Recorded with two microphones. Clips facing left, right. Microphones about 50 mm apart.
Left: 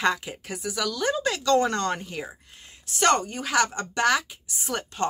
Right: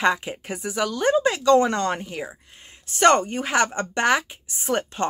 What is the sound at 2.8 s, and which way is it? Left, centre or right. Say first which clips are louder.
Speech: right 5 dB; right.